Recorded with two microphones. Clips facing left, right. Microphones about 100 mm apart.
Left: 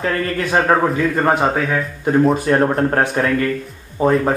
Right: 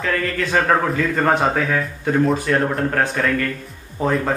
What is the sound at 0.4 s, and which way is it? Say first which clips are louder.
A man's voice: left 3 dB; 15° left (ahead or behind).